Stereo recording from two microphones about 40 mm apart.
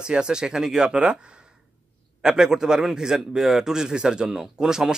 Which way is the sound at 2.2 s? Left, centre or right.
Centre.